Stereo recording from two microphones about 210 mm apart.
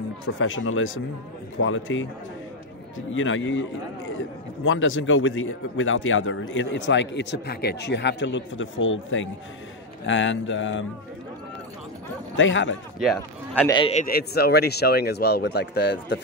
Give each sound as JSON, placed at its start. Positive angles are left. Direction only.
{"t": 0.4, "sound": "speech", "side_deg": 70}
{"t": 3.1, "sound": "speech", "side_deg": 70}
{"t": 4.6, "sound": "speech", "side_deg": 65}
{"t": 12.4, "sound": "speech", "side_deg": 65}
{"t": 13.0, "sound": "speech", "side_deg": 0}
{"t": 13.7, "sound": "a man's voice", "side_deg": 25}
{"t": 14.0, "sound": "speech", "side_deg": 45}